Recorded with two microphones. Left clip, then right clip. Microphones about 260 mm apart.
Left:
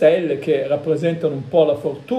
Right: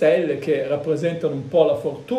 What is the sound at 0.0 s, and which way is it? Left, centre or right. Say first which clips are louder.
A man's voice: left 3 dB; centre.